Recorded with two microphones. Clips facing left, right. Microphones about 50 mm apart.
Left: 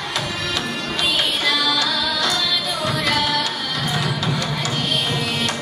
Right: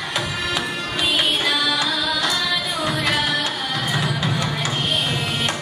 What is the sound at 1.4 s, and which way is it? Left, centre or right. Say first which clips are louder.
Music: left 1 dB; right.